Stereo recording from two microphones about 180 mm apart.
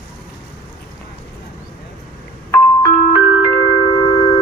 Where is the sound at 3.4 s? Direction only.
25° left (ahead or behind).